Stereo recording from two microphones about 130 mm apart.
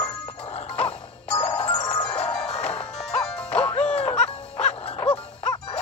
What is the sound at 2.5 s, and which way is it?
Music, 50° left (ahead or behind).